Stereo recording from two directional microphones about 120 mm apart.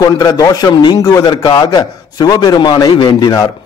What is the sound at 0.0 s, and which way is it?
A man's voice, 35° left (ahead or behind).